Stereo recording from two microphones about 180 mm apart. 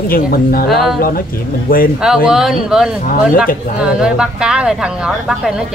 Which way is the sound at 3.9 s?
5° right (ahead or behind).